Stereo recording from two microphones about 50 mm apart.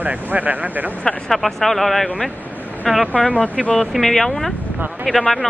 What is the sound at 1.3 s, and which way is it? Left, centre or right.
Speech, centre.